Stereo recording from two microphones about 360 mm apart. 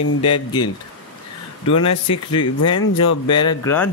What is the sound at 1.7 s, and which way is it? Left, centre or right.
Speech, centre.